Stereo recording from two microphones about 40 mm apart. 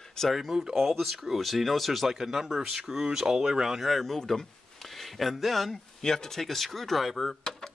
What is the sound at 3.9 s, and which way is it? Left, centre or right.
Speech, centre.